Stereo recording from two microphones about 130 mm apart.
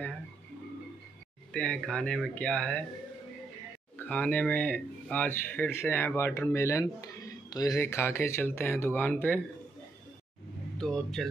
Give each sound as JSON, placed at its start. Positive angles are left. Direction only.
{"t": 1.5, "sound": "speech", "side_deg": 5}
{"t": 4.0, "sound": "speech", "side_deg": 10}
{"t": 10.8, "sound": "speech", "side_deg": 5}